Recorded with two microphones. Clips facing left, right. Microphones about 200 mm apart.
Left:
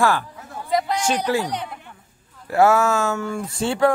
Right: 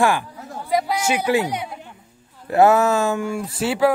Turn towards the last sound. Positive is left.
turn(degrees=-5)  # may be behind; listen again after turning